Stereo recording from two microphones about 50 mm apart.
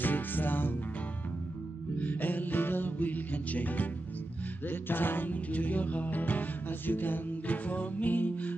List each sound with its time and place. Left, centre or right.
0.0 s music: left
2.0 s music: left